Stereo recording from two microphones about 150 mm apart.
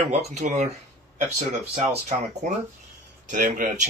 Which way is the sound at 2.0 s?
50° right (ahead or behind).